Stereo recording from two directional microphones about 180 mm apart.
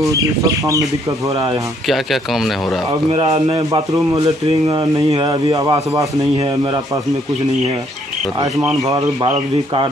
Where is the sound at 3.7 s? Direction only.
20° right (ahead or behind).